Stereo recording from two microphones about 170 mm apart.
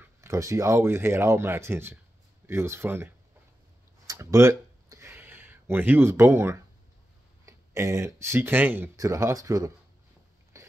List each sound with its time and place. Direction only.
0.0 s speech: 15° right (ahead or behind)
4.1 s a sound: 15° right (ahead or behind)
7.4 s speech: 15° right (ahead or behind)
10.5 s biting: 20° right (ahead or behind)